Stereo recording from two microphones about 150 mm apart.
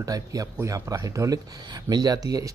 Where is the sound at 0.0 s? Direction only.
25° right (ahead or behind).